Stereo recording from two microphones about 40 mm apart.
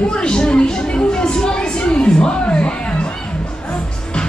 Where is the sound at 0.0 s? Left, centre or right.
Left.